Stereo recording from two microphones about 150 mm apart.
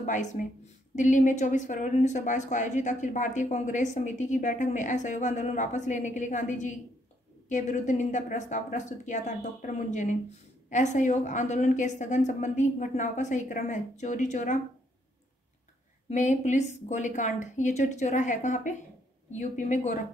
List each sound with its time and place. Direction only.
0.0 s a woman's voice: 55° left (ahead or behind)
16.1 s a woman's voice: 55° left (ahead or behind)